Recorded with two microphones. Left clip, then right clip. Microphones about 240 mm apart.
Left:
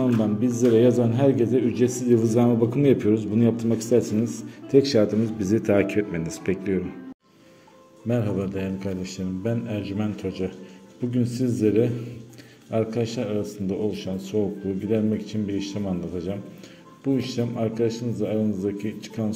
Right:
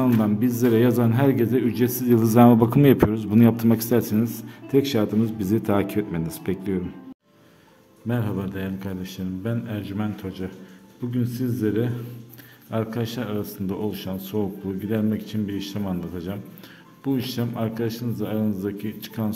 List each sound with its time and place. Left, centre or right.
0.0 s a man's voice: right
8.1 s a man's voice: centre